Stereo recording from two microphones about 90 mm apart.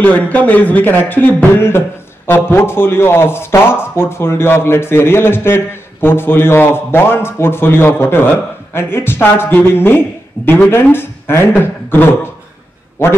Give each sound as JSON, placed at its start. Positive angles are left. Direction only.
{"t": 0.0, "sound": "a man's voice", "side_deg": 15}